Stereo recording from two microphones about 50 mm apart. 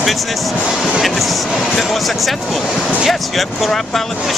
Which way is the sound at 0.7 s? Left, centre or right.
Centre.